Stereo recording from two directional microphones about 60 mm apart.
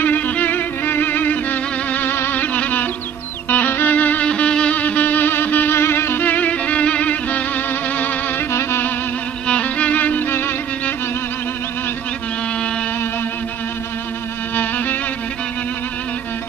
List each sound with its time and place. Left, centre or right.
0.0 s music: left
4.3 s music: centre; by 6.2 s left
6.2 s music: left
8.5 s music: left
9.5 s music: left
14.5 s music: left